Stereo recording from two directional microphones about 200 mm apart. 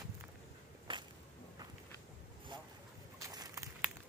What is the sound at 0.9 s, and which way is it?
Whip, 25° right (ahead or behind).